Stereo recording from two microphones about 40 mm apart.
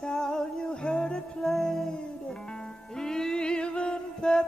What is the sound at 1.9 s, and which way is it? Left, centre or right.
Music, centre.